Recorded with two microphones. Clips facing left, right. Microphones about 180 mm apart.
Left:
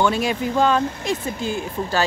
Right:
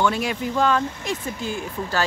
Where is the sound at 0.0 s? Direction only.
25° left (ahead or behind).